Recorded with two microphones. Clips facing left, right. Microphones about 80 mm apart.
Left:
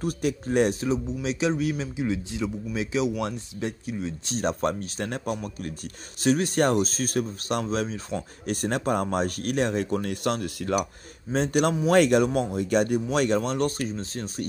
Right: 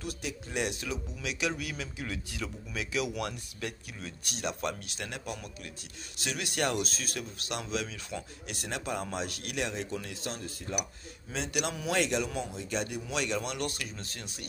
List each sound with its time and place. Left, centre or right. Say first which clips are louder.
0.0 s speech: left 11 dB; left
4.4 s speech: left 8 dB; left
10.2 s speech: left 11 dB; left
11.3 s speech: left 11 dB; left